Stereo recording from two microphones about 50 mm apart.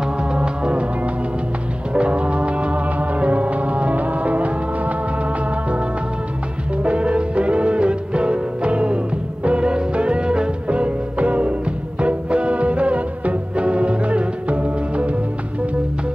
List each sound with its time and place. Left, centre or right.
0.0 s music: centre
2.0 s music: right
6.8 s music: right